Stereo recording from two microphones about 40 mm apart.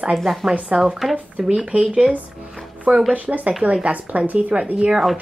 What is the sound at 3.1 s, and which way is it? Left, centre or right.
Speech, right.